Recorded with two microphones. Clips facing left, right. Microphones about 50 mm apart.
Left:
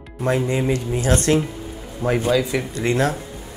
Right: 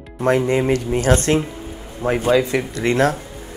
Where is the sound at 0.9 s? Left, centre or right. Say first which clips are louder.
Right 1 dB; right.